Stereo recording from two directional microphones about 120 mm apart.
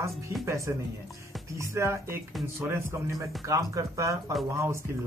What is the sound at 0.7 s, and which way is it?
Speech, 20° right (ahead or behind).